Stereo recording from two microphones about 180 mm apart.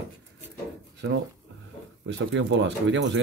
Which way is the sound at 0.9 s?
75° right (ahead or behind).